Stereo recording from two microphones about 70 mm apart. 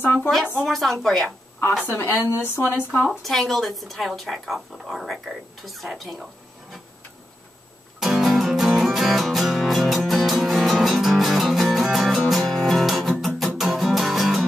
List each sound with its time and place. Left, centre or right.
0.0 s a woman's voice: left
0.7 s speech: centre
1.9 s speech: left
3.1 s speech: centre
8.0 s music: centre